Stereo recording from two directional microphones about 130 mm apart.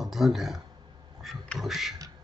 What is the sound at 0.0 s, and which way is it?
Speech, centre (ahead or behind).